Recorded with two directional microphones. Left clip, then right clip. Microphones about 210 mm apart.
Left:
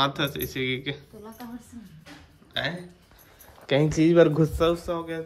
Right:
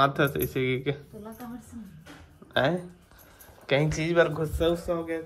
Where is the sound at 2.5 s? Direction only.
5° right (ahead or behind).